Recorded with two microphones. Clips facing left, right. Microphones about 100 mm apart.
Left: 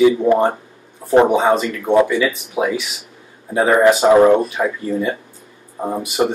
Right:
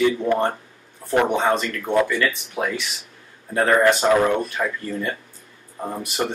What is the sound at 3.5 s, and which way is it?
Speech, 15° left (ahead or behind).